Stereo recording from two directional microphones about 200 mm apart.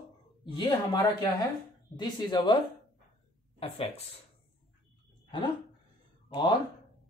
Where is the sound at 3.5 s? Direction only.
30° left (ahead or behind).